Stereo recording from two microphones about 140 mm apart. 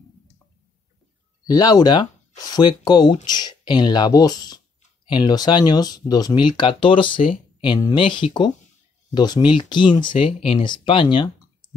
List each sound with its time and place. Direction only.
1.5 s speech: 25° left (ahead or behind)